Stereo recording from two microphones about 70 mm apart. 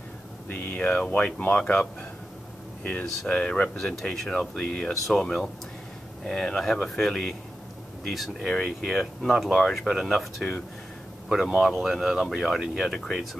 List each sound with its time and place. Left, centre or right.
0.5 s speech: left; by 13.4 s centre